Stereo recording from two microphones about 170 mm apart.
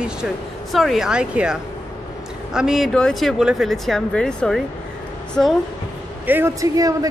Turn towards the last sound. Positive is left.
turn(degrees=-20)  # may be behind; listen again after turning